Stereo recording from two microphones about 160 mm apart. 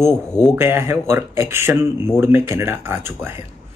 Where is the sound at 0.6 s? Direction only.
15° right (ahead or behind).